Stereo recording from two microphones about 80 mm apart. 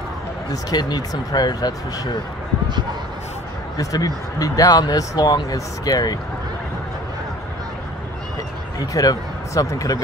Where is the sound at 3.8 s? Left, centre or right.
Left.